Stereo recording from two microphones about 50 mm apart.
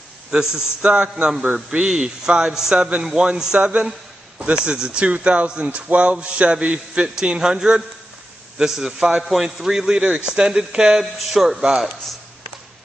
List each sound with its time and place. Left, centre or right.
0.3 s speech: centre
0.8 s speech: right
1.9 s speech: centre